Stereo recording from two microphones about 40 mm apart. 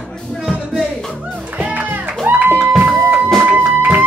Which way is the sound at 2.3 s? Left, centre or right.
Right.